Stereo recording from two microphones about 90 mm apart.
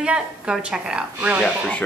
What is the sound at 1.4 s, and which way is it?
Speech, 10° left (ahead or behind).